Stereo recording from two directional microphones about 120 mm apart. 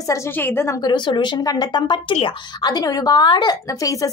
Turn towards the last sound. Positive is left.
turn(degrees=30)  # may be behind; listen again after turning